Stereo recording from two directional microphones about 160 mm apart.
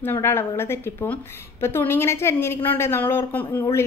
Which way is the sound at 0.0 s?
15° left (ahead or behind).